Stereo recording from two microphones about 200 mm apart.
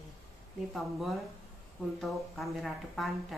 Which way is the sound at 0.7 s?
Centre (ahead or behind).